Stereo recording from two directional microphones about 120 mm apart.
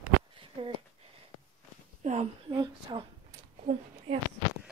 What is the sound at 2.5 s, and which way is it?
Speech, 40° right (ahead or behind).